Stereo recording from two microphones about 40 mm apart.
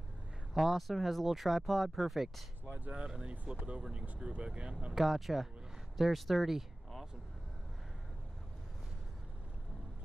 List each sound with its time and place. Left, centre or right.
0.6 s speech: centre
3.2 s speech: right
4.9 s speech: centre